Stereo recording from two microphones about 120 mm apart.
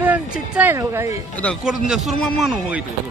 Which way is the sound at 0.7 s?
25° right (ahead or behind).